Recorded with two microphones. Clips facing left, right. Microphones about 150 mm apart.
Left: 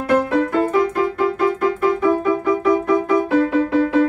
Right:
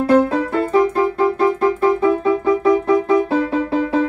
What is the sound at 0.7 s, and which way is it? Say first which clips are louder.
Music: right 2 dB; 30° right (ahead or behind).